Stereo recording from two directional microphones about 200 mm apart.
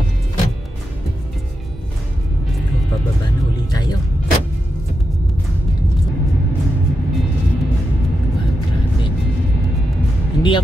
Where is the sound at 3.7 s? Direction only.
20° left (ahead or behind).